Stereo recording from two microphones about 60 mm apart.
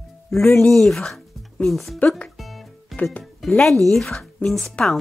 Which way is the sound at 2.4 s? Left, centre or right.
Centre.